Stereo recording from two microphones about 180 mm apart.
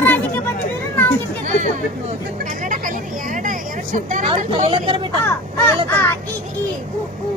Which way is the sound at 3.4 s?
45° right (ahead or behind).